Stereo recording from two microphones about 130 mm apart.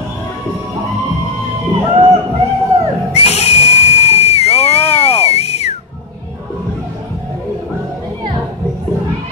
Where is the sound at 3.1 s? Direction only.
55° left (ahead or behind).